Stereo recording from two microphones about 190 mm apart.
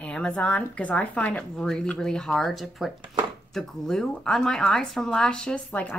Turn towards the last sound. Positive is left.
turn(degrees=5)  # may be behind; listen again after turning